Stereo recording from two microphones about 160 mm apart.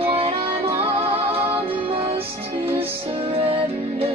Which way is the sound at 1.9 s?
35° right (ahead or behind).